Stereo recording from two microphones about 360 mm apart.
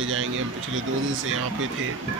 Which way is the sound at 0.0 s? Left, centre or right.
Right.